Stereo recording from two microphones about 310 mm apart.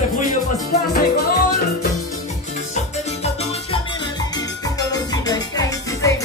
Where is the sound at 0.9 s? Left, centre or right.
Left.